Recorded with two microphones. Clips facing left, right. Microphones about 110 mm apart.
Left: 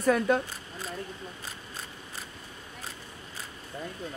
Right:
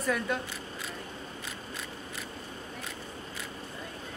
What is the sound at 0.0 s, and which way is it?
Speech, 40° left (ahead or behind).